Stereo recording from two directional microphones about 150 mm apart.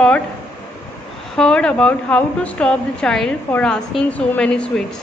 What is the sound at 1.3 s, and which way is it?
A woman's voice, 5° left (ahead or behind).